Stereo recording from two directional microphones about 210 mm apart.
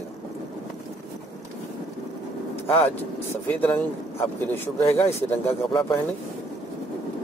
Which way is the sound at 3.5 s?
10° left (ahead or behind).